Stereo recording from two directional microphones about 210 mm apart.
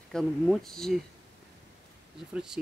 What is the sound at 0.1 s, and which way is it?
Speech, centre (ahead or behind).